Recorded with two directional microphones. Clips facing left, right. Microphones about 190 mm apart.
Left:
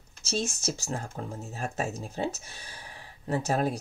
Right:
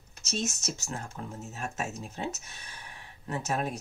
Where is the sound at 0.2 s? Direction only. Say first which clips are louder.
Left 3 dB; 30° left (ahead or behind).